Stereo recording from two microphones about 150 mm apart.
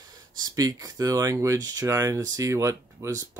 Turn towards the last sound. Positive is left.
turn(degrees=-20)  # may be behind; listen again after turning